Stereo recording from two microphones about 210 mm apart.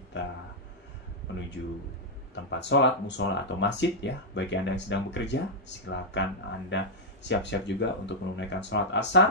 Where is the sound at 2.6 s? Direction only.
55° left (ahead or behind).